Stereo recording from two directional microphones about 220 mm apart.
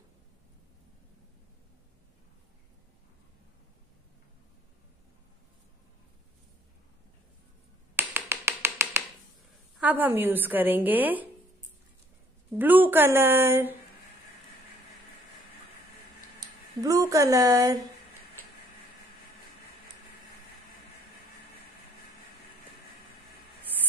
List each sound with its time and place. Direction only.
7.9 s finger snapping: 10° right (ahead or behind)
9.8 s a woman's voice: 5° right (ahead or behind)
12.5 s a woman's voice: 10° right (ahead or behind)
16.3 s speech: 15° right (ahead or behind)